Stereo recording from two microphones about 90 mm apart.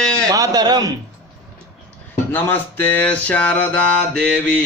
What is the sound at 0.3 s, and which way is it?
Speech, 45° right (ahead or behind).